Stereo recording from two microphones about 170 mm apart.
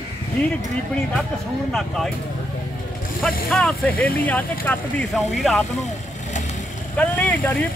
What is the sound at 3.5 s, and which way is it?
Speech, 10° left (ahead or behind).